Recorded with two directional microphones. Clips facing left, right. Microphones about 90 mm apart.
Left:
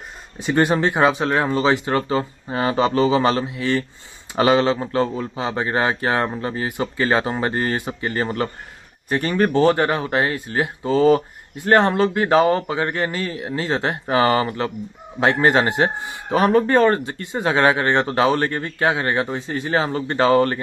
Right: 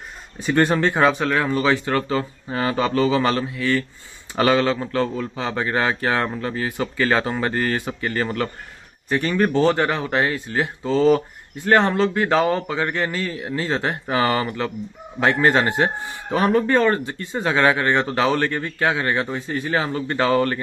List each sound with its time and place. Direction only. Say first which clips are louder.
0.6 s speech: left 1 dB; 10° left (ahead or behind)
1.3 s a man's voice: left 1 dB; 25° left (ahead or behind)